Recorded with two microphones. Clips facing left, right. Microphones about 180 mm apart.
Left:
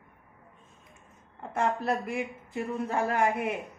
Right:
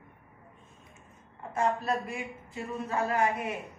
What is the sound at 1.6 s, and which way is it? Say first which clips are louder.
Speech: left 1 dB; 60° left (ahead or behind).